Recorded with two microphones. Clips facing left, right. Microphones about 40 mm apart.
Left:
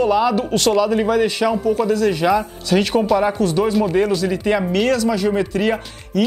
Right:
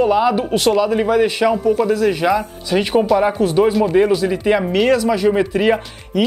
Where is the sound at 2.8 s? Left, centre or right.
Centre.